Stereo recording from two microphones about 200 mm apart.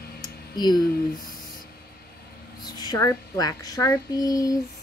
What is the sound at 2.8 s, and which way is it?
Speech, 20° left (ahead or behind).